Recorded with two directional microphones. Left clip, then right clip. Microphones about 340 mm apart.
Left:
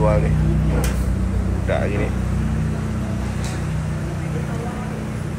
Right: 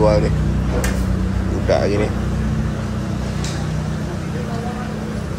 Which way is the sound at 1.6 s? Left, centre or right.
Centre.